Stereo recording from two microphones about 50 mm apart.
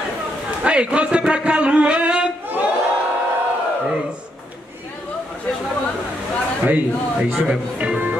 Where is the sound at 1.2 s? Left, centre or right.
Right.